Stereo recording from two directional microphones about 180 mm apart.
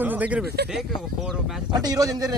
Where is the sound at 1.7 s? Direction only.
20° right (ahead or behind).